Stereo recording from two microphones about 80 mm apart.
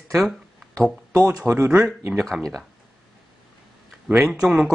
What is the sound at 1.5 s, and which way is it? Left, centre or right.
Speech, right.